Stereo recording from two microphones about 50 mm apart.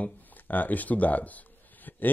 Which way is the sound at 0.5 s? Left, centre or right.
Left.